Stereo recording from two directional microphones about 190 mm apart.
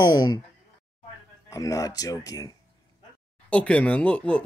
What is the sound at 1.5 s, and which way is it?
Speech, 15° left (ahead or behind).